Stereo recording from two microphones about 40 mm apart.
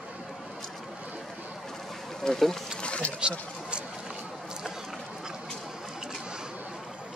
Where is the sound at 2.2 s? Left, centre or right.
Centre.